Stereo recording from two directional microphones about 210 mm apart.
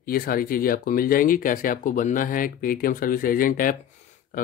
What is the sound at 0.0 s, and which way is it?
Speech, 45° left (ahead or behind).